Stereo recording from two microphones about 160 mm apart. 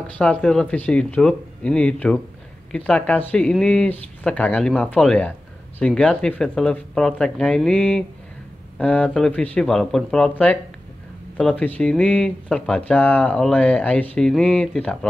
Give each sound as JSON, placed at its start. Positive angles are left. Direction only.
{"t": 0.0, "sound": "speech", "side_deg": 5}